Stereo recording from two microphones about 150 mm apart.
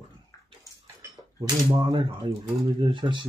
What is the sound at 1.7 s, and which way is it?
A man's voice, 30° right (ahead or behind).